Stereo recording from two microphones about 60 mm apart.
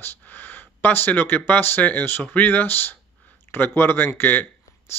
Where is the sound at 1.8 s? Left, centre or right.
Left.